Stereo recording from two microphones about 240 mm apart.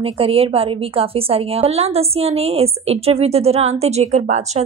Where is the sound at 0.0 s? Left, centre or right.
Right.